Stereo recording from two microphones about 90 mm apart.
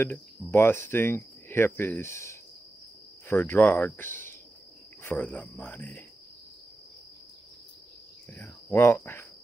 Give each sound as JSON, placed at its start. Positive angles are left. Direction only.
{"t": 0.0, "sound": "cricket", "side_deg": 20}
{"t": 3.3, "sound": "speech", "side_deg": 30}
{"t": 3.5, "sound": "cricket", "side_deg": 20}
{"t": 8.3, "sound": "cricket", "side_deg": 30}